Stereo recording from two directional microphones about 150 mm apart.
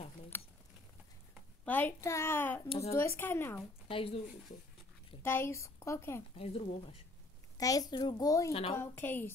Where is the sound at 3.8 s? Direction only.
40° left (ahead or behind).